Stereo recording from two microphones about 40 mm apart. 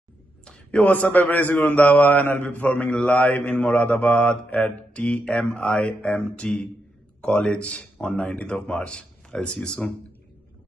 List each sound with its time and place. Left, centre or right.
0.7 s mantra: left
2.9 s mantra: left
3.3 s a man's voice: left
3.6 s mantra: left
4.9 s speech: left; by 9.9 s centre